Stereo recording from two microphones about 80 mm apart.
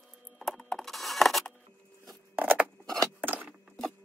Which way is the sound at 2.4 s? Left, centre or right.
Centre.